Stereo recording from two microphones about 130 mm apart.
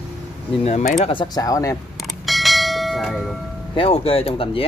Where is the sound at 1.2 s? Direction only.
30° left (ahead or behind).